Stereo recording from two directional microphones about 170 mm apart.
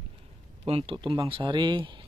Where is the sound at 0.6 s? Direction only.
35° right (ahead or behind).